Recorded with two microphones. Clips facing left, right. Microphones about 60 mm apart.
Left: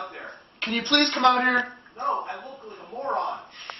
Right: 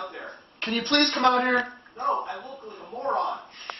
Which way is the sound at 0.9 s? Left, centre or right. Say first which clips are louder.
Left 1 dB; left.